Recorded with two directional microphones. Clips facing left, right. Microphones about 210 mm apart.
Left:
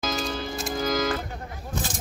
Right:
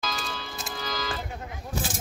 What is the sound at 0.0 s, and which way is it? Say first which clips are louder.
Music: left 6 dB; 50° left (ahead or behind).